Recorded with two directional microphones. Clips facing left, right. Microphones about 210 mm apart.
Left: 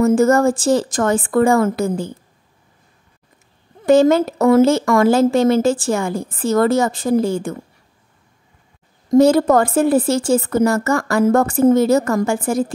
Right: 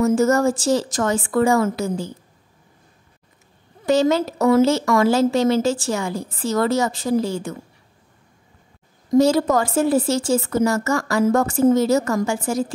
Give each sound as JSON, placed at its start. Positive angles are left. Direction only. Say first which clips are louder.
{"t": 0.0, "sound": "a woman's voice", "louder": "left 3 dB", "side_deg": 55}
{"t": 3.8, "sound": "speech", "louder": "left 5 dB", "side_deg": 55}
{"t": 9.1, "sound": "a woman's voice", "louder": "left 4 dB", "side_deg": 55}